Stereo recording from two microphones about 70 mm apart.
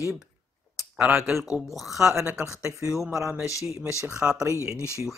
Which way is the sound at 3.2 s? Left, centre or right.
Centre.